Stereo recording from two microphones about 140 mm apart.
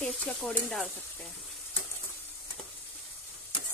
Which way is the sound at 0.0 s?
5° left (ahead or behind).